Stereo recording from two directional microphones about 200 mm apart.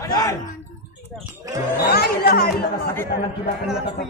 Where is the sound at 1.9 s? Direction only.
50° left (ahead or behind).